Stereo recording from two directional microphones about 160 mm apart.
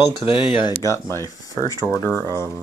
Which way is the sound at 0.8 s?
15° left (ahead or behind).